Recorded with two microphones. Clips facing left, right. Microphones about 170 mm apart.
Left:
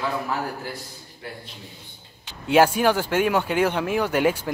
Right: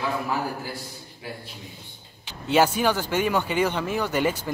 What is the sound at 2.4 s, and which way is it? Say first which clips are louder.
Speech: left 3 dB; 10° left (ahead or behind).